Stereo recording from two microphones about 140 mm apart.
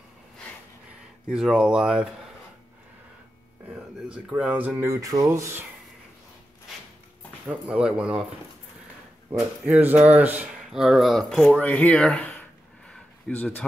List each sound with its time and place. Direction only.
1.3 s speech: 5° right (ahead or behind)
4.1 s speech: 10° right (ahead or behind)
7.4 s speech: 10° right (ahead or behind)
9.3 s speech: 10° right (ahead or behind)
11.6 s a sound: 10° left (ahead or behind)